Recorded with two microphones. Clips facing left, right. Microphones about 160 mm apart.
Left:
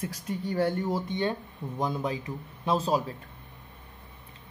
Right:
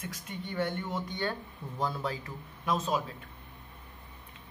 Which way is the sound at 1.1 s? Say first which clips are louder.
Left 5 dB; 20° left (ahead or behind).